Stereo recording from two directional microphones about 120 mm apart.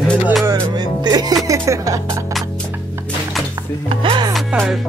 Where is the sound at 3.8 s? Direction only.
50° right (ahead or behind).